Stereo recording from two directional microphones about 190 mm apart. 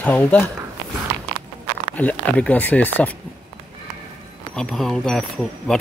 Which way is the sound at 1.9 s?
5° left (ahead or behind).